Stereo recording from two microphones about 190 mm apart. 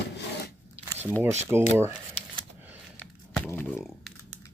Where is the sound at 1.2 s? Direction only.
10° right (ahead or behind).